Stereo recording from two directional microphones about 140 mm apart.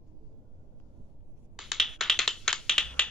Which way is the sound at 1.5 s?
Centre (ahead or behind).